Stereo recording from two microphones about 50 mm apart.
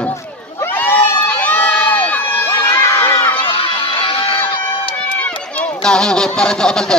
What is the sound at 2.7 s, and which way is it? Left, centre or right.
Crowd, left.